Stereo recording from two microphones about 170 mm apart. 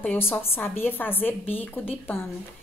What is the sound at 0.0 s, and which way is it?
A woman's voice, 10° left (ahead or behind).